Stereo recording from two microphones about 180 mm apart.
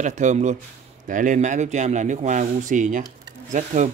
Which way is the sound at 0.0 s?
40° right (ahead or behind).